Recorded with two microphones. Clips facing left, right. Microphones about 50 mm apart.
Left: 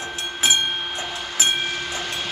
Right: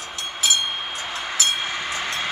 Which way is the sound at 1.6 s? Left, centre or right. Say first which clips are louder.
Even; right.